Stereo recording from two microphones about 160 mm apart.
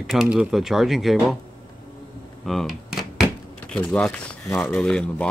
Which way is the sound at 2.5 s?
Centre (ahead or behind).